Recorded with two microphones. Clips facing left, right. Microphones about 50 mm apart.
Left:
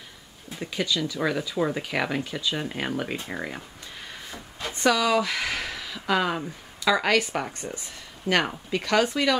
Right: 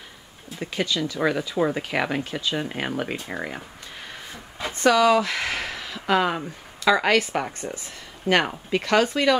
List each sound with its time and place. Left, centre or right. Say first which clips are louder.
0.6 s speech: right 2 dB; centre
4.8 s speech: right 4 dB; centre
8.3 s speech: right 3 dB; right
8.9 s speech: right 3 dB; centre